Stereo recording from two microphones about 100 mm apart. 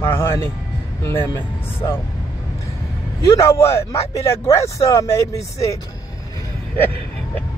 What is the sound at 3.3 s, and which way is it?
Speech, 30° left (ahead or behind).